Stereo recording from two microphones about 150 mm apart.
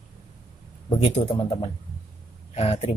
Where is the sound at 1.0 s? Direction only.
35° left (ahead or behind).